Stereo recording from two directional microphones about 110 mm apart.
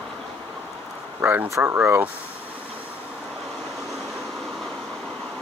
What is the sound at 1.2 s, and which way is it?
Speech, 20° right (ahead or behind).